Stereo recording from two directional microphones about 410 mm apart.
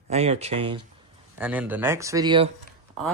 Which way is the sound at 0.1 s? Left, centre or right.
Centre.